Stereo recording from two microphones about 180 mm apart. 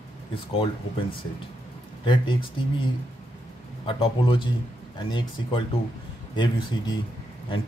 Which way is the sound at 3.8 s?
30° left (ahead or behind).